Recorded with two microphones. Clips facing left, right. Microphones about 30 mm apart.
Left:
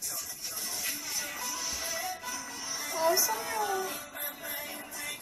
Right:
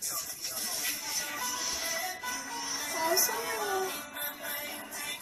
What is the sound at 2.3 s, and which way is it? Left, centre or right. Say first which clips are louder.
Music: right 2 dB; right.